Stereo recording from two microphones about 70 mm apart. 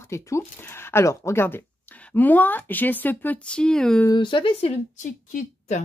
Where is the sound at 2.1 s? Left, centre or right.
Left; by 4.0 s centre.